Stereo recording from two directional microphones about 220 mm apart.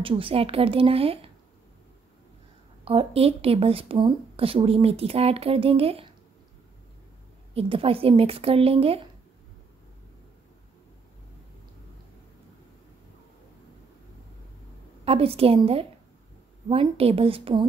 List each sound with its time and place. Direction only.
0.0 s speech: 25° right (ahead or behind)
2.8 s speech: 25° right (ahead or behind)
7.5 s speech: 25° right (ahead or behind)
15.0 s speech: 25° right (ahead or behind)